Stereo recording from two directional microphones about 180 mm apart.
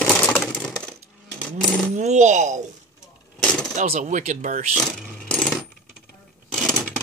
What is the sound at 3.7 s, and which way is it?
Speech, 40° right (ahead or behind).